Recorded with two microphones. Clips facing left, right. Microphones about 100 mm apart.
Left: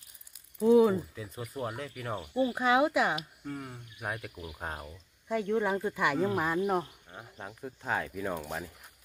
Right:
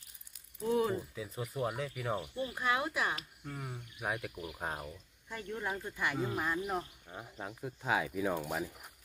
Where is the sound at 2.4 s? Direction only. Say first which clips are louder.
Left 11 dB; 90° left.